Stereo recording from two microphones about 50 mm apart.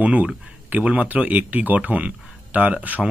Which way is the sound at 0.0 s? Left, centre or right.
Right.